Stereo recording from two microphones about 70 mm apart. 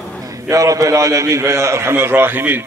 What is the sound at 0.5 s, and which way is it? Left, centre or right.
A man's voice, right.